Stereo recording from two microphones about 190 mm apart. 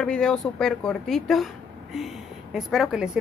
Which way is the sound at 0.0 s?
5° left (ahead or behind).